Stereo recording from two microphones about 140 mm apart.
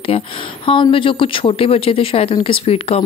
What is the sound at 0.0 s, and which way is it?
Speech, 45° left (ahead or behind).